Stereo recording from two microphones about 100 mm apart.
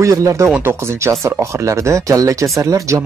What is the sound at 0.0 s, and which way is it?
Speech, 35° right (ahead or behind).